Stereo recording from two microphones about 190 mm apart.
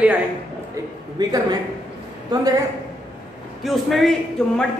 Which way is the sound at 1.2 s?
20° right (ahead or behind).